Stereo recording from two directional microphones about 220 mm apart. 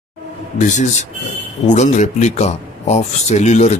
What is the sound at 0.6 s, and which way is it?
A man's voice, 35° left (ahead or behind).